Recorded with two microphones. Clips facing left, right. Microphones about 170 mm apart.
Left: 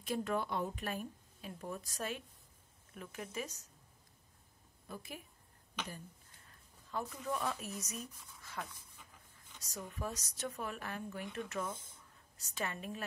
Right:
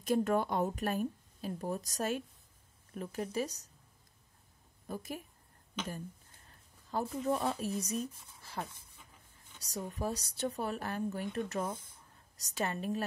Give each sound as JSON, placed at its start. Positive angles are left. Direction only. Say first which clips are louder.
{"t": 0.0, "sound": "a woman's voice", "louder": "right 7 dB", "side_deg": -45}
{"t": 4.8, "sound": "a woman's voice", "louder": "right 7 dB", "side_deg": -40}
{"t": 6.9, "sound": "a woman's voice", "louder": "right 7 dB", "side_deg": -35}